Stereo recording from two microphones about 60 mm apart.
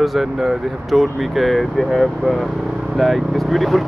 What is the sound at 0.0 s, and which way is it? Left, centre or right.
Speech, centre.